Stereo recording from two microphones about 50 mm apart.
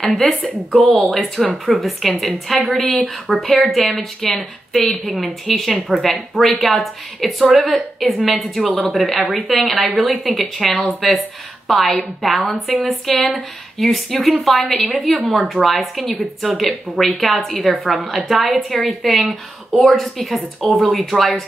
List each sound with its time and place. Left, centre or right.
0.2 s speech: centre
3.8 s speech: centre
4.4 s speech: centre